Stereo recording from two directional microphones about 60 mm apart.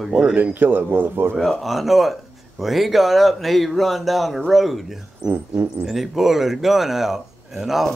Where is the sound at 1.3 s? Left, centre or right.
Centre.